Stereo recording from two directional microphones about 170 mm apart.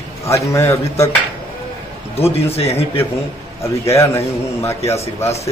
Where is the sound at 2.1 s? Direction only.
35° left (ahead or behind).